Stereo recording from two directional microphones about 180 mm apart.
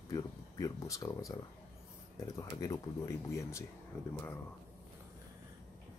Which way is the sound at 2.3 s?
20° left (ahead or behind).